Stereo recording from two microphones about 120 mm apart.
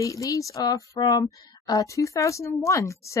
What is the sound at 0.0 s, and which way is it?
Speech, 30° left (ahead or behind).